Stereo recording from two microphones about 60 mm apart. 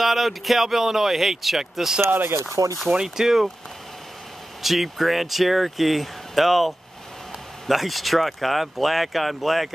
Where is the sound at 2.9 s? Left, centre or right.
Centre.